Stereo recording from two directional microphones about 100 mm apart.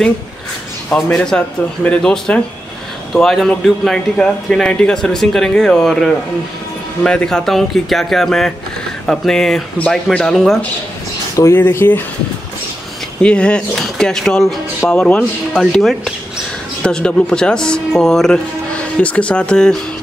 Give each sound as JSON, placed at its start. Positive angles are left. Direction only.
{"t": 1.1, "sound": "speech", "side_deg": 10}
{"t": 11.3, "sound": "speech", "side_deg": 25}
{"t": 13.2, "sound": "speech", "side_deg": 10}